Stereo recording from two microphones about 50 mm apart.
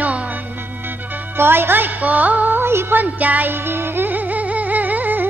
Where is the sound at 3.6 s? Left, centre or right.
Right.